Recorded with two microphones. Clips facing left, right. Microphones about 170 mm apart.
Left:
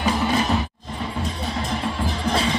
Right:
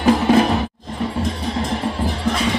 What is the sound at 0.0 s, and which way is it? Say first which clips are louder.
Music: right 7 dB; 55° right (ahead or behind).